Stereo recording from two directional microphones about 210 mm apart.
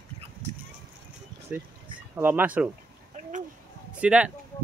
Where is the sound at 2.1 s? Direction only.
10° right (ahead or behind).